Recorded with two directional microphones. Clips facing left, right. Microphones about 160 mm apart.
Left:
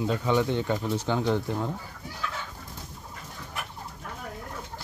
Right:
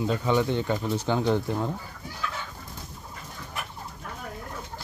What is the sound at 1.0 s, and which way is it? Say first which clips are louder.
Speech: right 3 dB; 20° right (ahead or behind).